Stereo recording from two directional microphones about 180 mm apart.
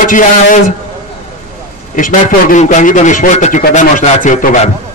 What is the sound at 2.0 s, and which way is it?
A man's voice, 45° left (ahead or behind).